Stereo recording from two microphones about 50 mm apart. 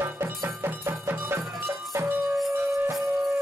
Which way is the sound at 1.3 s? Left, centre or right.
Right.